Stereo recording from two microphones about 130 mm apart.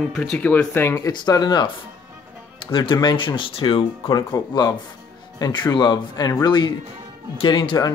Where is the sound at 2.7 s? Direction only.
40° left (ahead or behind).